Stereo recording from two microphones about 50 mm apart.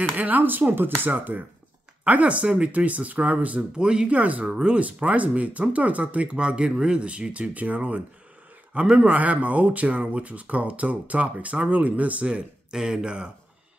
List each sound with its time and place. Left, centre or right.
0.0 s speech: right
4.5 s speech: centre
4.7 s speech: right
12.7 s speech: centre